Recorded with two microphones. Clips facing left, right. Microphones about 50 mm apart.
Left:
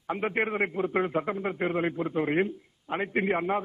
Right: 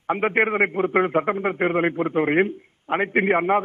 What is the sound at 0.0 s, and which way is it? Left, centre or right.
A man's voice, right.